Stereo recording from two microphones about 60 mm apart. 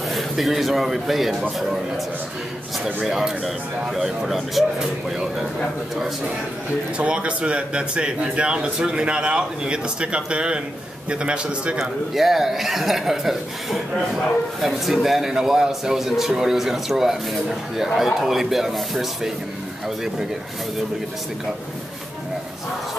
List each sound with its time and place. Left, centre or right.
0.1 s a man's voice: centre
3.0 s speech: centre
7.0 s speech: centre
11.8 s speech: centre